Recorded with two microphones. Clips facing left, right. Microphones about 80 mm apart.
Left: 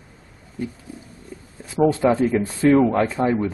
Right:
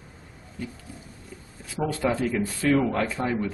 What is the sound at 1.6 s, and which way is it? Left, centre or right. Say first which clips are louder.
Speech: left 9 dB; left.